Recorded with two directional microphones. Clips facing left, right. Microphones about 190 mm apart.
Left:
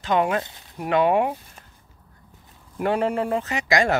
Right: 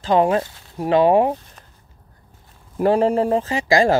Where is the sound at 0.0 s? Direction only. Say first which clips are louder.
Right 5 dB; 35° right (ahead or behind).